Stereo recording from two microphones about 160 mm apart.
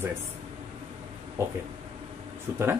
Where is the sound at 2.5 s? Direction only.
15° right (ahead or behind).